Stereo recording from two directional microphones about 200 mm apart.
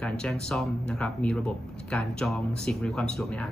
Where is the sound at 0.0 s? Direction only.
5° left (ahead or behind).